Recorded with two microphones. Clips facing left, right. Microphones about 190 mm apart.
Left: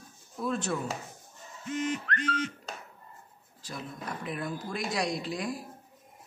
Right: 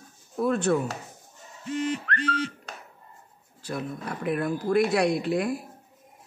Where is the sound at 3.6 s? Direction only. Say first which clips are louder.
Right 7 dB; 60° right (ahead or behind).